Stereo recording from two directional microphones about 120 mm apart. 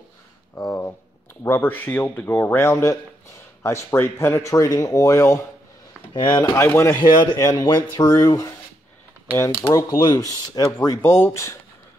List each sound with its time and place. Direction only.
0.6 s speech: 20° left (ahead or behind)
6.1 s speech: 35° left (ahead or behind)
6.5 s speech: 20° left (ahead or behind)
7.0 s speech: 35° left (ahead or behind)
9.7 s speech: 30° left (ahead or behind)